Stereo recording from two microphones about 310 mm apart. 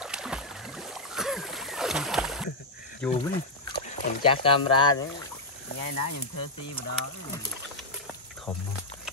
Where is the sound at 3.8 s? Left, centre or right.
Centre.